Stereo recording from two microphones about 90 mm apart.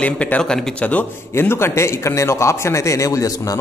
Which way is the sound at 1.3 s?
30° left (ahead or behind).